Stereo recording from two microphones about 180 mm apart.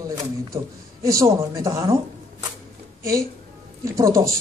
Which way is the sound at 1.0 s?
20° right (ahead or behind).